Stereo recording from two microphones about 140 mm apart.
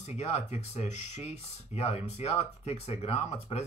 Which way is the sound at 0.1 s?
50° left (ahead or behind).